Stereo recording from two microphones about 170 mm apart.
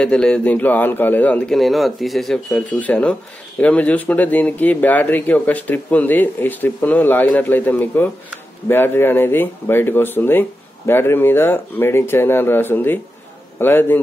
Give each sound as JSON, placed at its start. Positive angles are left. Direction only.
{"t": 0.0, "sound": "speech", "side_deg": 5}